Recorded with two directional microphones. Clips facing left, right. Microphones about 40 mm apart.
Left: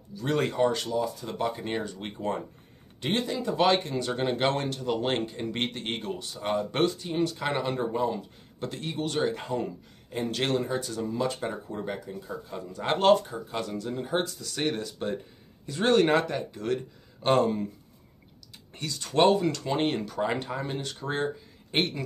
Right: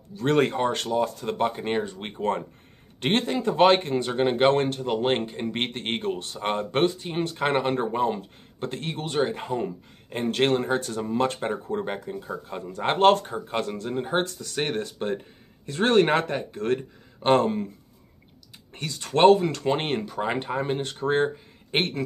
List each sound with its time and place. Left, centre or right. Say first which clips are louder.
0.1 s speech: right 6 dB; right
9.0 s speech: right 2 dB; right
10.0 s speech: right 6 dB; right
10.6 s speech: right 4 dB; right
10.9 s speech: right 4 dB; right
18.8 s speech: right 4 dB; right